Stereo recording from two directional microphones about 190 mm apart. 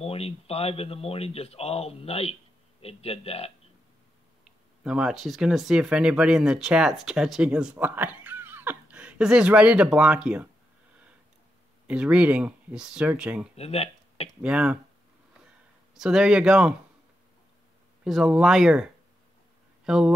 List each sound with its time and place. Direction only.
0.0 s speech: 30° left (ahead or behind)
4.5 s speech: 5° right (ahead or behind)
11.9 s speech: 5° right (ahead or behind)
13.6 s speech: 30° left (ahead or behind)
14.4 s speech: 5° right (ahead or behind)
15.9 s speech: 5° right (ahead or behind)
18.0 s speech: centre (ahead or behind)
19.9 s speech: centre (ahead or behind)